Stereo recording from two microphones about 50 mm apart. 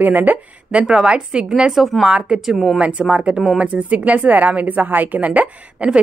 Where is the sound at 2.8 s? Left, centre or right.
Right.